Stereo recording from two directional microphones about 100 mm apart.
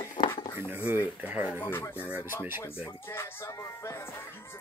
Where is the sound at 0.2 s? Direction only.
50° left (ahead or behind).